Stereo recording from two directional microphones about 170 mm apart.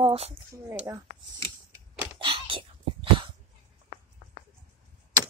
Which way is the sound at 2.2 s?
30° right (ahead or behind).